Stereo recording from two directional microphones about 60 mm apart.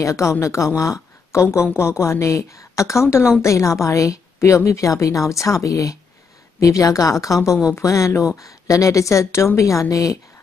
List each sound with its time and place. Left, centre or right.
0.0 s a woman's voice: left
8.4 s a woman's voice: left
9.6 s speech: left